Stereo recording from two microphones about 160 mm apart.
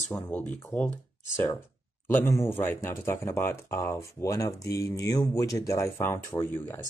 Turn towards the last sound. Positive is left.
turn(degrees=15)  # may be behind; listen again after turning